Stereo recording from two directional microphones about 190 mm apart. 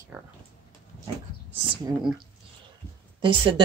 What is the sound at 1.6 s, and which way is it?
Speech, 20° right (ahead or behind).